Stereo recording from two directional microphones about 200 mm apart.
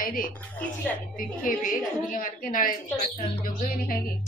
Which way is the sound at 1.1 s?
40° left (ahead or behind).